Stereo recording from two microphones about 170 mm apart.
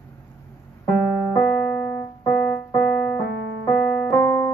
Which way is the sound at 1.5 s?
10° left (ahead or behind).